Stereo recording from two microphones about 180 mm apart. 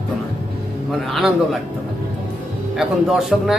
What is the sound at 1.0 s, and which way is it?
Speech, centre (ahead or behind).